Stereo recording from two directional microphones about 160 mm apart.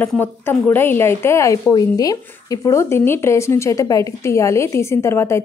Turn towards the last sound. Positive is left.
turn(degrees=15)  # may be behind; listen again after turning